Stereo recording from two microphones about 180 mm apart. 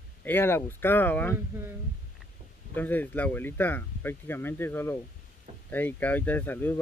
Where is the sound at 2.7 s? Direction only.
10° left (ahead or behind).